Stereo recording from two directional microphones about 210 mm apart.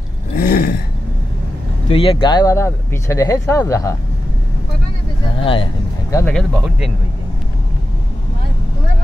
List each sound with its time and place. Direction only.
0.4 s a sound: 45° left (ahead or behind)
1.9 s speech: 25° left (ahead or behind)
5.4 s speech: 25° left (ahead or behind)
6.1 s speech: 5° left (ahead or behind)